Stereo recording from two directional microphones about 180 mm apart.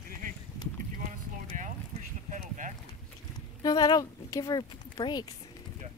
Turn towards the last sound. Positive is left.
turn(degrees=25)  # may be behind; listen again after turning